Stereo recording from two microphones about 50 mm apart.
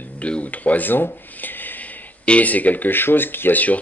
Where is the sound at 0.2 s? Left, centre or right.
Left.